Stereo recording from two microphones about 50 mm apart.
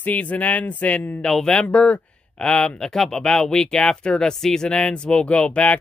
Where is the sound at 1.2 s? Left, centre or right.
Centre.